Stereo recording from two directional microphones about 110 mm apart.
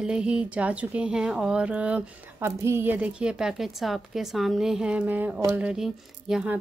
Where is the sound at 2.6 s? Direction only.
25° right (ahead or behind); by 6.5 s 5° right (ahead or behind).